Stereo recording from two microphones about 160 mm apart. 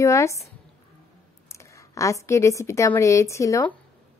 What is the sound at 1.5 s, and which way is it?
Speech, 20° left (ahead or behind).